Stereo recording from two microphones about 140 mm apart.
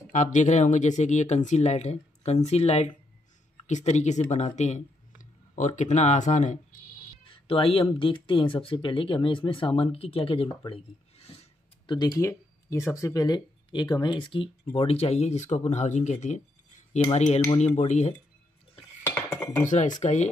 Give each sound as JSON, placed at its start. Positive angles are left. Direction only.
{"t": 0.1, "sound": "a woman's voice", "side_deg": 60}
{"t": 7.2, "sound": "speech", "side_deg": 40}
{"t": 11.8, "sound": "speech", "side_deg": 30}
{"t": 14.8, "sound": "speech", "side_deg": 45}
{"t": 19.0, "sound": "dishes", "side_deg": 20}
{"t": 20.0, "sound": "speech", "side_deg": 55}